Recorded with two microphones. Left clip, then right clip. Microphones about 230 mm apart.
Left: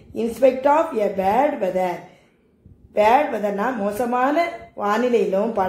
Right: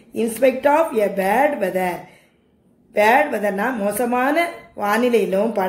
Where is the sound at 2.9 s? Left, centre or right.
Right.